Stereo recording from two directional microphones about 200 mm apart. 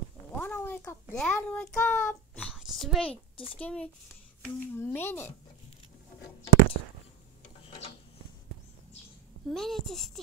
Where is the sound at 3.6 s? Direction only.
5° left (ahead or behind).